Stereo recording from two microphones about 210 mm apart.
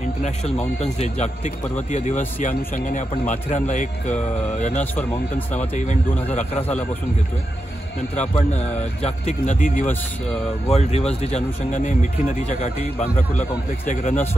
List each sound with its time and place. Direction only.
0.2 s a man's voice: 30° left (ahead or behind)
8.2 s a man's voice: 35° left (ahead or behind)